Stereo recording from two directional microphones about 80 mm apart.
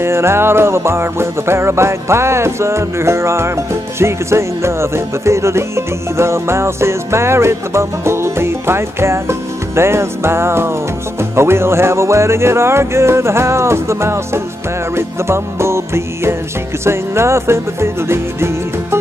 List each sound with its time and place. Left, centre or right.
0.0 s music: right